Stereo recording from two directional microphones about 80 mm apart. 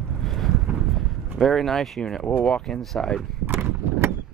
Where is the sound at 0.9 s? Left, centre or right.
Centre.